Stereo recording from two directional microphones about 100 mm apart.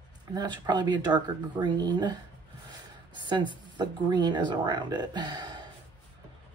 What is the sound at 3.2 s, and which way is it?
Speech, 50° right (ahead or behind).